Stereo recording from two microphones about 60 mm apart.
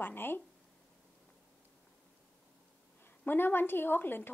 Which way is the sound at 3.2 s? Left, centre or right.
Left.